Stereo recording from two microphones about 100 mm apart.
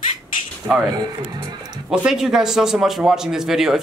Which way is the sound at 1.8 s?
5° right (ahead or behind).